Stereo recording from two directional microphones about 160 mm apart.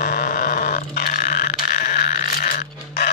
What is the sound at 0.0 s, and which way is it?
Burping, 65° left (ahead or behind).